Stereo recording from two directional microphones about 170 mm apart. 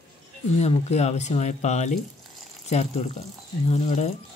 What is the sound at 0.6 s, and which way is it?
Speech, 40° left (ahead or behind).